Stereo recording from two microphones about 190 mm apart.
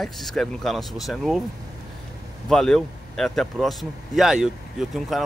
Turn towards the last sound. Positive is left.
turn(degrees=0)  # may be behind; listen again after turning